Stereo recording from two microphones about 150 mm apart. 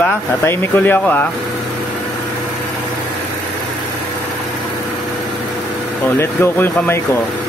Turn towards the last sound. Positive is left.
turn(degrees=15)  # may be behind; listen again after turning